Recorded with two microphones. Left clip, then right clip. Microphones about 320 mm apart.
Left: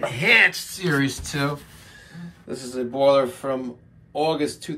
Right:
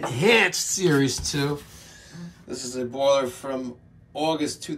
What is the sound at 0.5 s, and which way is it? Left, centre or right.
Speech, right.